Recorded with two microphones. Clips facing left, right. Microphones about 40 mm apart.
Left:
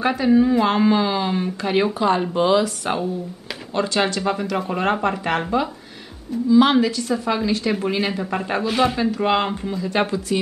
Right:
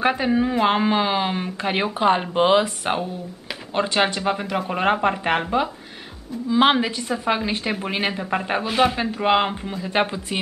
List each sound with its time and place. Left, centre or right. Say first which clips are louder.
0.0 s speech: left 3 dB; right
6.5 s speech: left 3 dB; right
8.1 s a man's voice: even; centre